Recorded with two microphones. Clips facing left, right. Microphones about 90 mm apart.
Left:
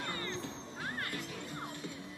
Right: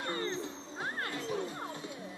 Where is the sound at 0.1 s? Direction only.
25° right (ahead or behind).